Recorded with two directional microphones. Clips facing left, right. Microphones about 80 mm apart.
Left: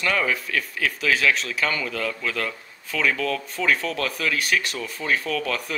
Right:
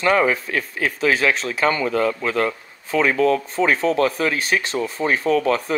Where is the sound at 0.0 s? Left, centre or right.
Right.